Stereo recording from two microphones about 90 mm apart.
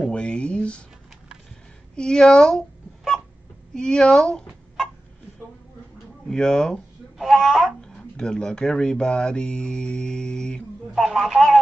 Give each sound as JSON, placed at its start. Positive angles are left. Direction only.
{"t": 0.1, "sound": "speech", "side_deg": 15}
{"t": 2.0, "sound": "a sound", "side_deg": 5}
{"t": 3.7, "sound": "speech", "side_deg": 5}
{"t": 6.2, "sound": "a child's voice", "side_deg": 5}